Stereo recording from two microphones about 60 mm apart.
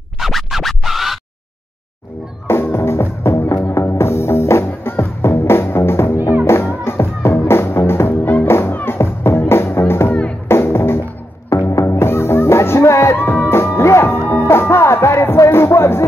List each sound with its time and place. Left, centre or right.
0.2 s music: centre
2.4 s music: left